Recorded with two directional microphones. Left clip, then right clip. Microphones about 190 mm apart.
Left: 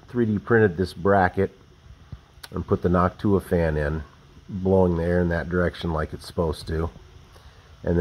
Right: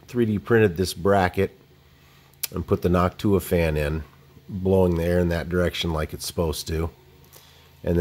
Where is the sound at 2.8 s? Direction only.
30° right (ahead or behind).